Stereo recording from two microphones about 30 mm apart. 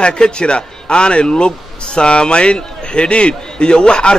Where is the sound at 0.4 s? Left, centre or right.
Left.